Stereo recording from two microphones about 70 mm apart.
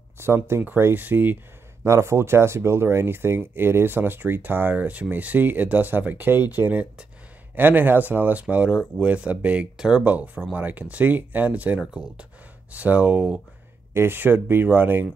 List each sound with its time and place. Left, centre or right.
0.2 s speech: right
1.9 s speech: right; by 13.4 s centre
13.9 s speech: right